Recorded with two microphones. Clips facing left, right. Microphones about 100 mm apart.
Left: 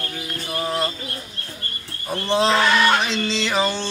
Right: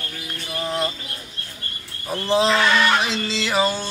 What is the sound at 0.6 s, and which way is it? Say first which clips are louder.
Bird: even; 5° left (ahead or behind).